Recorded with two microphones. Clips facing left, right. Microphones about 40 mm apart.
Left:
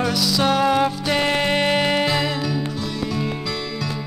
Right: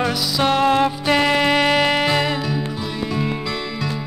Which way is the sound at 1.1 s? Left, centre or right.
Centre.